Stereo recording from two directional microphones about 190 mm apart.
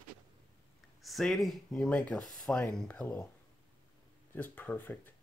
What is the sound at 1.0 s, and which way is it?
Speech, centre (ahead or behind).